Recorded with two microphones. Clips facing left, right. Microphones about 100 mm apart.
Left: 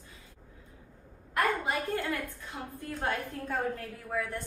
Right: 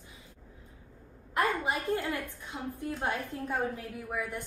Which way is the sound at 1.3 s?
20° right (ahead or behind).